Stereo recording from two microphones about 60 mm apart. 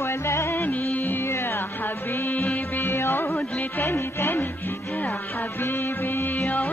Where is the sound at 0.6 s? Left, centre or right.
Left.